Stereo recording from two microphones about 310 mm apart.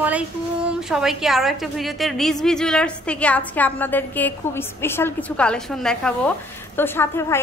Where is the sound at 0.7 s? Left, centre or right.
Centre.